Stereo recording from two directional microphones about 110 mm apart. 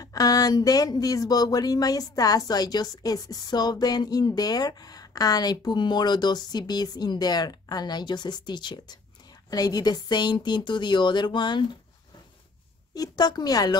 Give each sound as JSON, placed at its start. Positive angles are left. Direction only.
{"t": 0.0, "sound": "speech", "side_deg": 35}
{"t": 12.9, "sound": "speech", "side_deg": 35}